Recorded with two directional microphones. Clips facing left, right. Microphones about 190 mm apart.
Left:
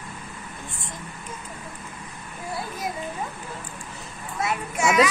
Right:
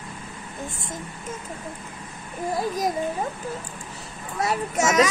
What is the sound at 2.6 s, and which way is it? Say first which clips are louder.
Children playing: right 7 dB; 40° right (ahead or behind).